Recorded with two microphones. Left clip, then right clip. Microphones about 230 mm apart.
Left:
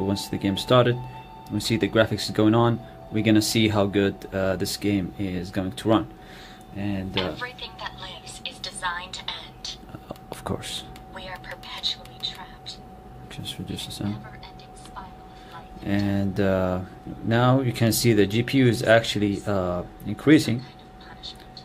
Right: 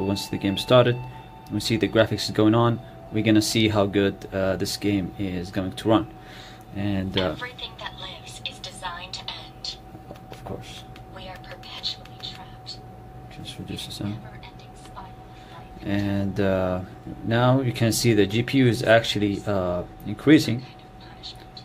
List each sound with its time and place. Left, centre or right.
0.0 s speech: centre
6.8 s speech: centre
8.8 s music: centre
10.4 s speech: left
11.1 s whispering: centre
13.7 s speech: centre
15.8 s speech: centre